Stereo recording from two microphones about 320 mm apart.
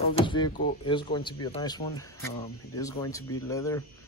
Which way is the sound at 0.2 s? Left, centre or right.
Centre.